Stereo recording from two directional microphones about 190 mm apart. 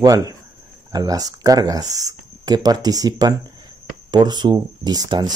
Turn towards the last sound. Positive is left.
turn(degrees=-20)  # may be behind; listen again after turning